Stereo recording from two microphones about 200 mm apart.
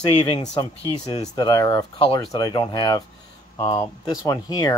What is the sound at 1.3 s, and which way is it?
Speech, 25° left (ahead or behind).